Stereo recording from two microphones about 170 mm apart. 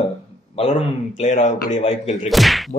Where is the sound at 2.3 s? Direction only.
Centre (ahead or behind).